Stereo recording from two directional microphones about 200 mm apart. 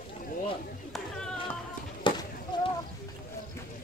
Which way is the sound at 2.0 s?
25° left (ahead or behind).